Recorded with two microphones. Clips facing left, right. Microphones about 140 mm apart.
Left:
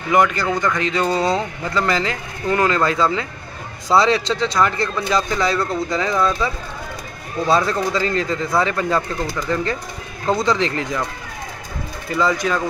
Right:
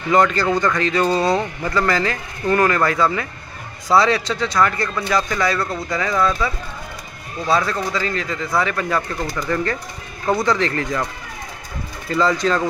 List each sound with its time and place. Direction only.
0.1 s a man's voice: 15° left (ahead or behind); by 8.4 s 35° left (ahead or behind)
8.5 s speech: 25° left (ahead or behind)
12.1 s speech: 10° left (ahead or behind)